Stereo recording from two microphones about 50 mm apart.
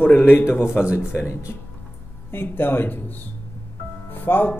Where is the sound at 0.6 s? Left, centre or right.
Left.